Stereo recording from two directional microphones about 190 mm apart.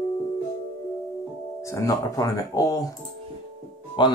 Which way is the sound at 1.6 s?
15° left (ahead or behind).